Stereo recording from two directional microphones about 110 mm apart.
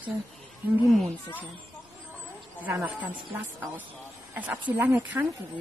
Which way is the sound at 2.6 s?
15° right (ahead or behind).